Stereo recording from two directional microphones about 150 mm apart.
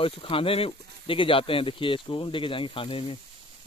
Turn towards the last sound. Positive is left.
turn(degrees=35)  # may be behind; listen again after turning